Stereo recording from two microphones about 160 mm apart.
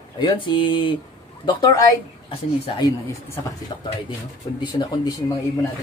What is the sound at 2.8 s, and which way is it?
Speech, 20° left (ahead or behind).